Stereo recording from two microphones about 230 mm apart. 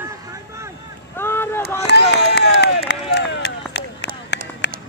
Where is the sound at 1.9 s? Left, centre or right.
Left.